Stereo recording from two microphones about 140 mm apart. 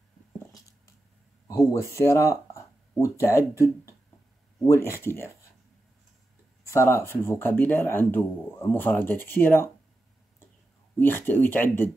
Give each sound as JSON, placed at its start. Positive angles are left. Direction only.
{"t": 1.5, "sound": "speech", "side_deg": 20}
{"t": 6.7, "sound": "speech", "side_deg": 20}
{"t": 11.0, "sound": "speech", "side_deg": 15}